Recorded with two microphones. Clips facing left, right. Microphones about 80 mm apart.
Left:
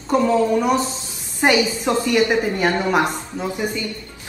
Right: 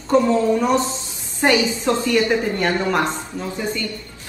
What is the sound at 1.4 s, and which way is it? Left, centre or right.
A woman's voice, centre.